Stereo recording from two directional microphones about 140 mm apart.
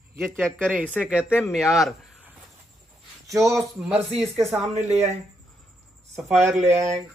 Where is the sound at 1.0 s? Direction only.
5° right (ahead or behind).